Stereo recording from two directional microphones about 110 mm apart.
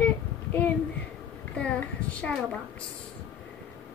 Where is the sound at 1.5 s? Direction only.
10° left (ahead or behind).